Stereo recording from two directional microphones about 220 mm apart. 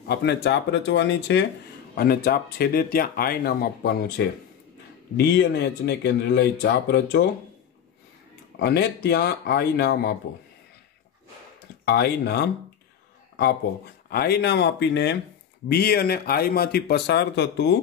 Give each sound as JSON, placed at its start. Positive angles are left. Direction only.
{"t": 0.1, "sound": "speech", "side_deg": 50}
{"t": 2.0, "sound": "speech", "side_deg": 45}
{"t": 8.5, "sound": "speech", "side_deg": 45}
{"t": 11.8, "sound": "speech", "side_deg": 45}
{"t": 14.0, "sound": "speech", "side_deg": 45}